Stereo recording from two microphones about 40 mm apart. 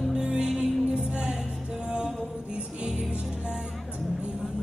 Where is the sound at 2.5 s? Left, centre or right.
Right.